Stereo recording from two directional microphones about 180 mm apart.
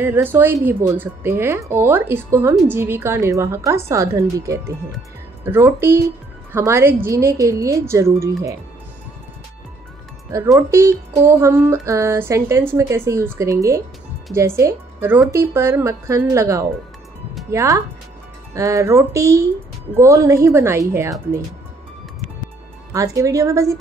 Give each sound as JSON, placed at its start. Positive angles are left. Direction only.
{"t": 0.0, "sound": "speech", "side_deg": -10}
{"t": 10.7, "sound": "speech", "side_deg": -15}
{"t": 22.9, "sound": "speech", "side_deg": -15}